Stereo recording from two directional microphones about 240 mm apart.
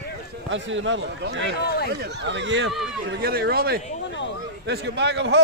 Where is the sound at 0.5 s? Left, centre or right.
Right.